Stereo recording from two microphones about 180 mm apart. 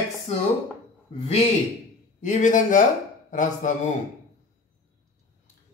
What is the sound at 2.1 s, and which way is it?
Speech, 45° left (ahead or behind).